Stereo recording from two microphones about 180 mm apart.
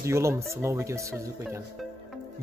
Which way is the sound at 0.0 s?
15° right (ahead or behind).